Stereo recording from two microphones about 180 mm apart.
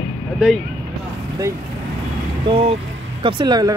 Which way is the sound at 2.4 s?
30° right (ahead or behind).